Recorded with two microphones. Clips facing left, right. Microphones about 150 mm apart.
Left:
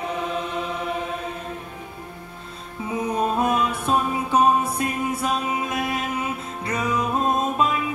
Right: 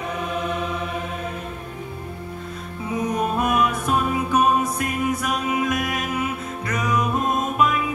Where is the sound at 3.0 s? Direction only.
30° left (ahead or behind).